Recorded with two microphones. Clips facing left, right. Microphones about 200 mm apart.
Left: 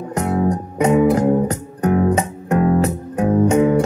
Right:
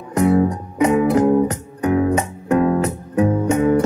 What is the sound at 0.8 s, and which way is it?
Music, 30° left (ahead or behind).